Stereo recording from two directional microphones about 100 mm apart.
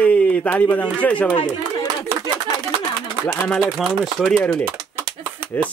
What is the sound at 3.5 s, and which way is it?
Speech, centre (ahead or behind).